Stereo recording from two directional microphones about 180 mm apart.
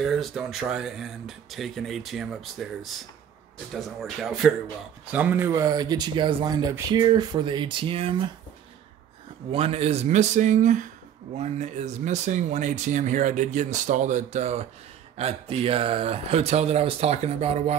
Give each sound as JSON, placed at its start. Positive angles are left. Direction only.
{"t": 0.0, "sound": "speech", "side_deg": 0}
{"t": 9.5, "sound": "speech", "side_deg": -35}